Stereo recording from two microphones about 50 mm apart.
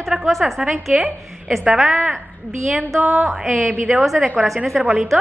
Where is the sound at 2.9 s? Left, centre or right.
Right.